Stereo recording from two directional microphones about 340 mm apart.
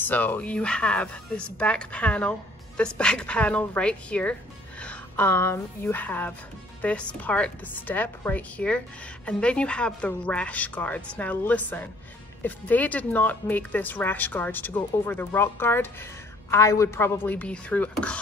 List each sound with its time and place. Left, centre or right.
0.0 s speech: centre